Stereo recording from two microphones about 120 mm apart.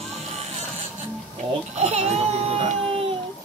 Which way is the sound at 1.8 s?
65° right (ahead or behind).